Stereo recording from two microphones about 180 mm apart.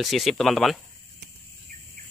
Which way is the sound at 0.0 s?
Centre (ahead or behind).